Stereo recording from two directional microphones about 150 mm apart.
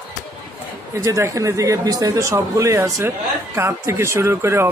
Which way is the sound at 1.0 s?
20° right (ahead or behind).